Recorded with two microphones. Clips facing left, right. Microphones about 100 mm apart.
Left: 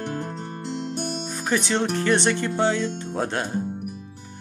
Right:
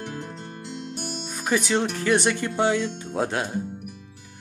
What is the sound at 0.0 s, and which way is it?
Music, 35° left (ahead or behind).